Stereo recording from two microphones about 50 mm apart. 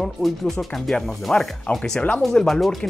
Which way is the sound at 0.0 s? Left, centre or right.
Centre.